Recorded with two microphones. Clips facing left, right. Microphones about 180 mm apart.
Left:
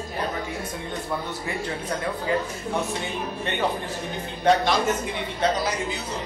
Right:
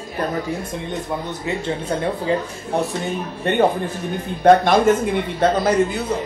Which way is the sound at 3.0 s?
50° right (ahead or behind).